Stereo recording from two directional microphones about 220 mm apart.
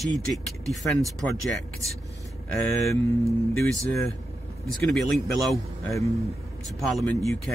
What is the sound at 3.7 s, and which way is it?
Speech, centre (ahead or behind).